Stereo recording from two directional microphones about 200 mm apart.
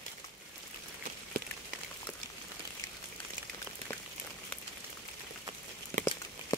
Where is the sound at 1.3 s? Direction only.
45° right (ahead or behind).